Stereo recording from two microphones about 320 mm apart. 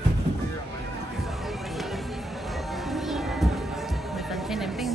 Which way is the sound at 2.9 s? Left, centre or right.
Centre.